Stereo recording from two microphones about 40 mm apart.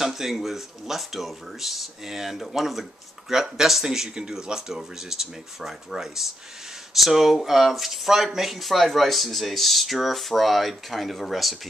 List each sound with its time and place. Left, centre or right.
0.0 s speech: centre